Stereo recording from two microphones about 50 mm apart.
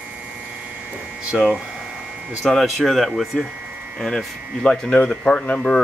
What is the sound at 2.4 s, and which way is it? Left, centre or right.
Speech, centre.